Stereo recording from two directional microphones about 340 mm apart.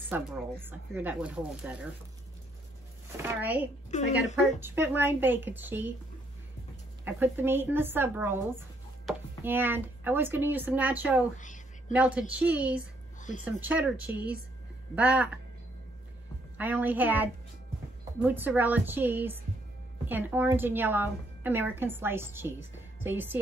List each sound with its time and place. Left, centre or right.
0.1 s a woman's voice: centre
3.2 s a woman's voice: centre
3.9 s speech: left
4.6 s a woman's voice: centre
7.1 s a woman's voice: centre
11.3 s a sound: left
11.9 s a woman's voice: centre
13.2 s speech: left
13.5 s a woman's voice: centre
16.5 s a woman's voice: centre